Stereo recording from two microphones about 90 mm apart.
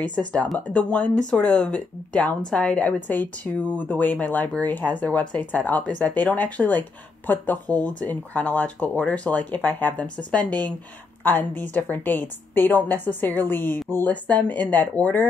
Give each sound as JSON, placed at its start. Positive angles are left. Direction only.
{"t": 0.0, "sound": "a woman's voice", "side_deg": 15}